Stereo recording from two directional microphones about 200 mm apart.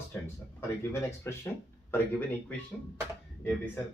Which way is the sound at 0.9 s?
15° left (ahead or behind).